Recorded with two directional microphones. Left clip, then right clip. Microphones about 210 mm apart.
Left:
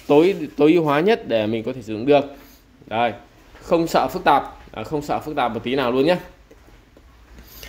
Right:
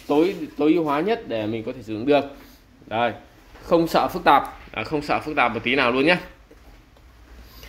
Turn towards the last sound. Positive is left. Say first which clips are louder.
# even
turn(degrees=15)  # may be behind; listen again after turning